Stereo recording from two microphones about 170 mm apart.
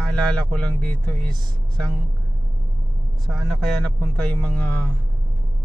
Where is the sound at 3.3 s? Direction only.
5° left (ahead or behind).